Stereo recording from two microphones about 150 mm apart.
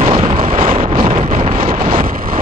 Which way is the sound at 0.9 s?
45° right (ahead or behind).